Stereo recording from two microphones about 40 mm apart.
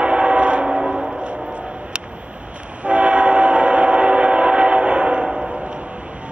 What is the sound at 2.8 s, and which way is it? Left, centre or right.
Train, right.